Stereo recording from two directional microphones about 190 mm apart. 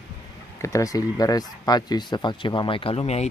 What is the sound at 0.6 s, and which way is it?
Speech, 15° left (ahead or behind).